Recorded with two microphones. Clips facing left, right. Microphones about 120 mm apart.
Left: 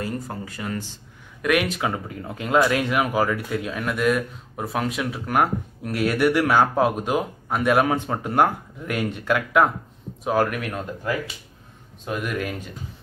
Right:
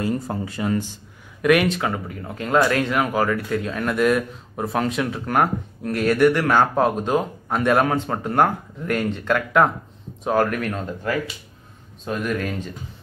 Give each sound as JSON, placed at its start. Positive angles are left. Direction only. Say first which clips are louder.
{"t": 0.0, "sound": "speech", "louder": "right 5 dB", "side_deg": -25}
{"t": 1.4, "sound": "speech", "louder": "right 4 dB", "side_deg": 0}
{"t": 1.8, "sound": "speech", "louder": "right 1 dB", "side_deg": 15}